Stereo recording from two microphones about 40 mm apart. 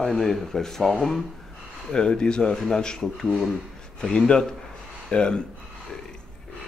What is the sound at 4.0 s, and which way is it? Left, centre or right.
Speech, centre.